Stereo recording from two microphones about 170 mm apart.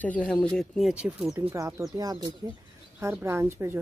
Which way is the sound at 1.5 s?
20° right (ahead or behind).